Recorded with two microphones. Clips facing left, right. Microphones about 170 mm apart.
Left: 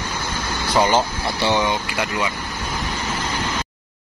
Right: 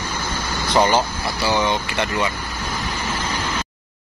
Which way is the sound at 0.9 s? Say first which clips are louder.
Even; 20° left (ahead or behind).